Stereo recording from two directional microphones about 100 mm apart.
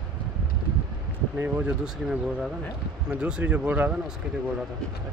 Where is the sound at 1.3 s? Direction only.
15° right (ahead or behind).